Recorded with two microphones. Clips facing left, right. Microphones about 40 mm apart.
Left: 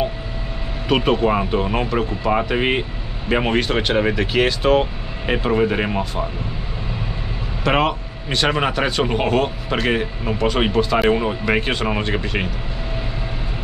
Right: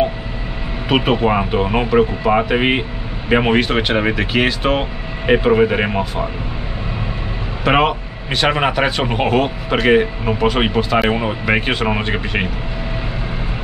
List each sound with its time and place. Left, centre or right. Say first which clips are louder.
0.8 s speech: right 2 dB; centre
7.6 s speech: right 3 dB; centre